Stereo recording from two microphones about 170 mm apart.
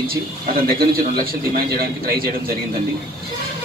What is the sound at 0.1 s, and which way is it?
Speech, 60° right (ahead or behind).